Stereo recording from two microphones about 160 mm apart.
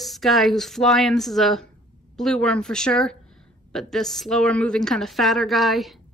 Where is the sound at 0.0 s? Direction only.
Centre (ahead or behind).